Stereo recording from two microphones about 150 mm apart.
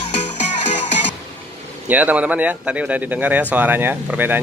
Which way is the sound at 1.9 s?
10° right (ahead or behind).